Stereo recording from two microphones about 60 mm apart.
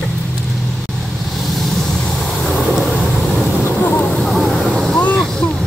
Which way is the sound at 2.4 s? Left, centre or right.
Centre.